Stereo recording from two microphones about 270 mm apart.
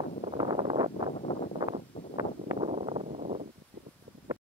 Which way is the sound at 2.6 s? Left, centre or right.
Centre.